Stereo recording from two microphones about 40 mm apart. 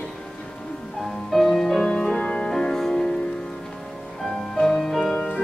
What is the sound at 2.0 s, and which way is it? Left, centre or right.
Music, left.